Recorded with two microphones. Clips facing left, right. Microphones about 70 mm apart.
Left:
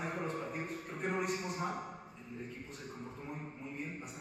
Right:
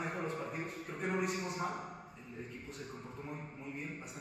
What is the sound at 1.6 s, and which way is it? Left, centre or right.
Speech, left.